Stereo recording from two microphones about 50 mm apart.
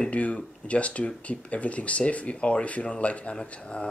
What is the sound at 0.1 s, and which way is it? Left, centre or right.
Speech, left.